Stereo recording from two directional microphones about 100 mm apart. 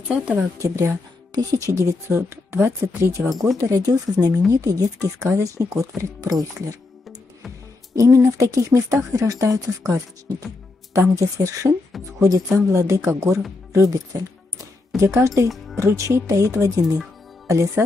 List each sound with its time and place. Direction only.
0.1 s speech: 10° right (ahead or behind)
0.6 s speech: 30° right (ahead or behind)
3.3 s speech: centre (ahead or behind)
3.5 s speech: 35° right (ahead or behind)
13.7 s music: 35° right (ahead or behind)
15.1 s speech: 35° right (ahead or behind)